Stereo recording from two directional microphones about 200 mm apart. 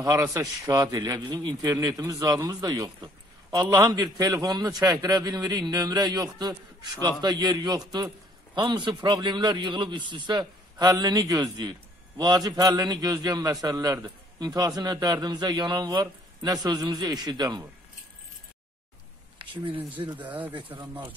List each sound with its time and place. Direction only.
0.0 s a man's voice: 15° right (ahead or behind)
19.3 s speech: 25° right (ahead or behind)
20.7 s speech: 10° right (ahead or behind)